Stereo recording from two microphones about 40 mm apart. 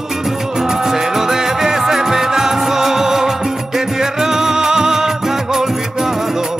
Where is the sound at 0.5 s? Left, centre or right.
Centre.